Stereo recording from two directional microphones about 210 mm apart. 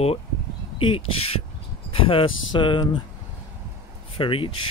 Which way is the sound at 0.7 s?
25° left (ahead or behind).